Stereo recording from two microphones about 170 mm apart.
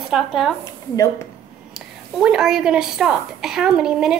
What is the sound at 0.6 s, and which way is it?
Speech, 20° left (ahead or behind).